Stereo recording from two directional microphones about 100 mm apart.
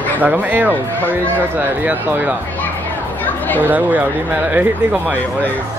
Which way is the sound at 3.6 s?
15° right (ahead or behind).